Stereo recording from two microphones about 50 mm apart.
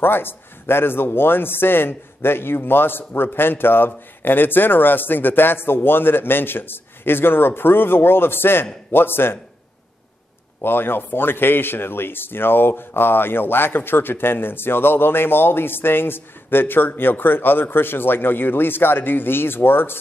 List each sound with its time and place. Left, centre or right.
0.0 s a man's voice: left
10.6 s a man's voice: left